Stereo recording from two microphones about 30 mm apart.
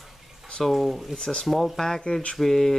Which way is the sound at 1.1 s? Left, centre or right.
Left.